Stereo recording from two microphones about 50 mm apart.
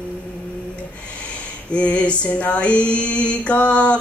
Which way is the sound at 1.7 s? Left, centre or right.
Left.